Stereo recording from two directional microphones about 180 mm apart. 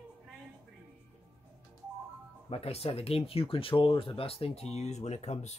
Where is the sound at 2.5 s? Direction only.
35° left (ahead or behind).